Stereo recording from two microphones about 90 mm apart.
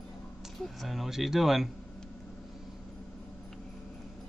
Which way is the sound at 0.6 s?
Centre (ahead or behind).